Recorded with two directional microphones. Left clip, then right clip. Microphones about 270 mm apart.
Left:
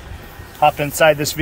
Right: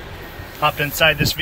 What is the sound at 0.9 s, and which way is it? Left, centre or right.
Speech, left.